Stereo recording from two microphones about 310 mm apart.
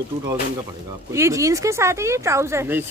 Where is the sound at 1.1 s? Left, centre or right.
Centre.